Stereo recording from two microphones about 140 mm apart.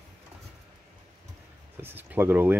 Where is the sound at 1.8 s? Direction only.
15° right (ahead or behind).